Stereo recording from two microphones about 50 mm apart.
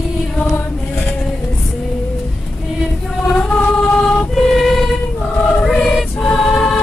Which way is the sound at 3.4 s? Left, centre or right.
Left.